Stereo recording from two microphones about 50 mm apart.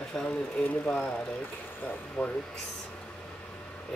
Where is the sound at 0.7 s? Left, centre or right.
Centre.